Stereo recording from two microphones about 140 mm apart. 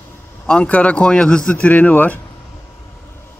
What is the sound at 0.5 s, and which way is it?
Speech, 10° left (ahead or behind).